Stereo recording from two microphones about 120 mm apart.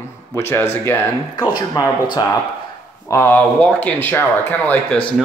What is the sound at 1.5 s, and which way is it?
Speech, 35° left (ahead or behind).